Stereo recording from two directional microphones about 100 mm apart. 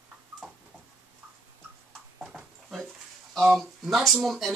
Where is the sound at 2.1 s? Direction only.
5° right (ahead or behind).